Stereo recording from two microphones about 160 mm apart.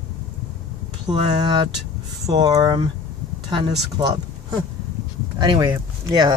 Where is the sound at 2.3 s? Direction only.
25° right (ahead or behind).